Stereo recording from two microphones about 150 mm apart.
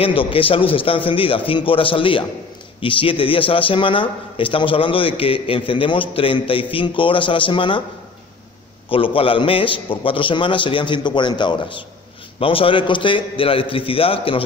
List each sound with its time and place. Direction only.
0.0 s a man's voice: 35° left (ahead or behind)
8.8 s a man's voice: 35° left (ahead or behind)